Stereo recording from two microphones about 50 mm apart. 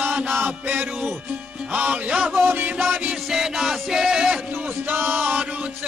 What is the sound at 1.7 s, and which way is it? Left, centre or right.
Music, right.